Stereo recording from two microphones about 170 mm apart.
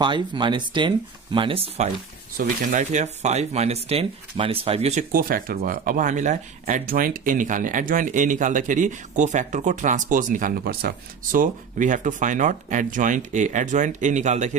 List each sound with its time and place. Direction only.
0.0 s speech: 25° right (ahead or behind)
2.3 s speech: 50° right (ahead or behind)
5.1 s speech: 60° right (ahead or behind)
11.3 s speech: 50° right (ahead or behind)